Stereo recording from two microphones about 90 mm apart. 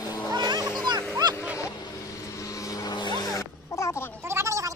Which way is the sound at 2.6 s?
45° left (ahead or behind).